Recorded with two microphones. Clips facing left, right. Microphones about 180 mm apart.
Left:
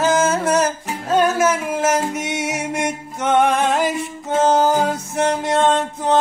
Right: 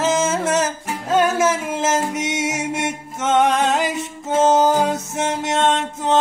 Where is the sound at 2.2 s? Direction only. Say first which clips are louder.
Right 1 dB; 20° right (ahead or behind).